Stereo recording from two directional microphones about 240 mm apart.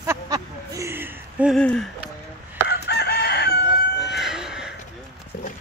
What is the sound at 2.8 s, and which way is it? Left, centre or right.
Chicken, left.